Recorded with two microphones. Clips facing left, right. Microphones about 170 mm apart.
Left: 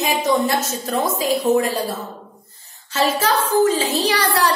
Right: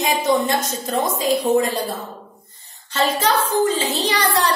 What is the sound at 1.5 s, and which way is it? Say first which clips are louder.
Speech: left 1 dB; 10° right (ahead or behind).